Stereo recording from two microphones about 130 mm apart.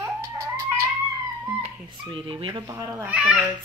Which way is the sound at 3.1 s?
10° right (ahead or behind).